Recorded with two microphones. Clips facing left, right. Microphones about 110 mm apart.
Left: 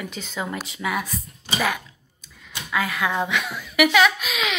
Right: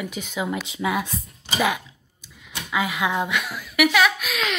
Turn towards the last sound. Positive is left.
turn(degrees=0)  # may be behind; listen again after turning